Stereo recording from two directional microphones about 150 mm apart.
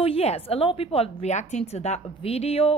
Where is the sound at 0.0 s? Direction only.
40° left (ahead or behind).